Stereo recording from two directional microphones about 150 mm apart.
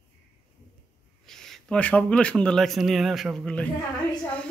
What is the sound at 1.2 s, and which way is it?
A man's voice, centre (ahead or behind).